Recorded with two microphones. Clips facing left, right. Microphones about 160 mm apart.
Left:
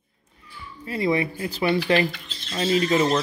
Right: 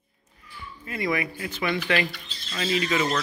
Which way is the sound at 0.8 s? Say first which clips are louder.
Left 5 dB; 30° left (ahead or behind).